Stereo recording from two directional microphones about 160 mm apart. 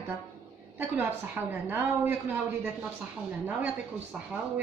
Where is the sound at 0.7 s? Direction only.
10° right (ahead or behind).